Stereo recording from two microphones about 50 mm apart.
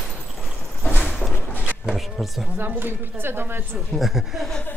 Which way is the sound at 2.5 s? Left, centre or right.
Right.